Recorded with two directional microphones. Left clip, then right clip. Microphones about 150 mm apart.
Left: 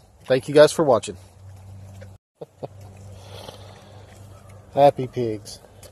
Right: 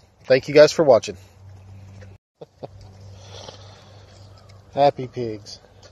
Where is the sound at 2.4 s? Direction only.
10° left (ahead or behind).